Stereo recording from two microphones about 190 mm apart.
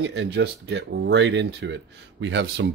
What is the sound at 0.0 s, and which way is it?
Speech, 65° right (ahead or behind).